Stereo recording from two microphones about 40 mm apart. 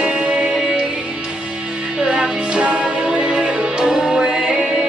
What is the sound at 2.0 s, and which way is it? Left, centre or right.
Music, right.